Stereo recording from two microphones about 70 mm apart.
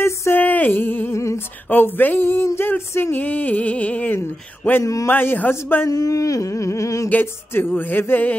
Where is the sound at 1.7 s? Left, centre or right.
Left.